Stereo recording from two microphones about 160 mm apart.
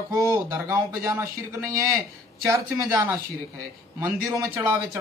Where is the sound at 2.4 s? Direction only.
20° right (ahead or behind).